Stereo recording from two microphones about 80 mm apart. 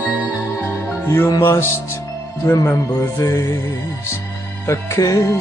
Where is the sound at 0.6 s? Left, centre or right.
Left.